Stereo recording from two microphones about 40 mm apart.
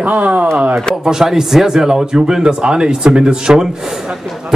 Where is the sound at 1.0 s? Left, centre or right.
Centre.